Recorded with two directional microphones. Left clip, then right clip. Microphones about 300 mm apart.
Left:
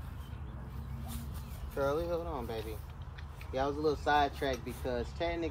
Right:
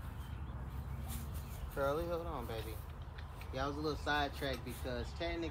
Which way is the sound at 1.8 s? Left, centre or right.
Left.